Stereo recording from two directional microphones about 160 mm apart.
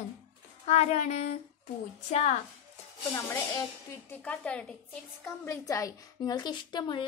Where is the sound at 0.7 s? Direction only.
45° left (ahead or behind).